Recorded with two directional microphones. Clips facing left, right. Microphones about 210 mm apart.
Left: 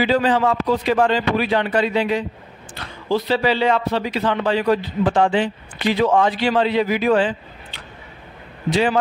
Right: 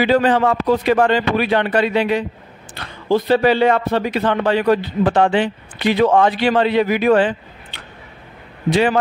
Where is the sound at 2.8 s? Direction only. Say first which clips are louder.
Right 4 dB; 55° right (ahead or behind).